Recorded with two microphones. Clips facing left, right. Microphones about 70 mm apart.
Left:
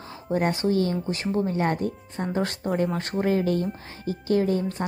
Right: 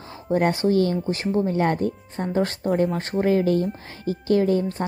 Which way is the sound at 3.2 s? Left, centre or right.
Right.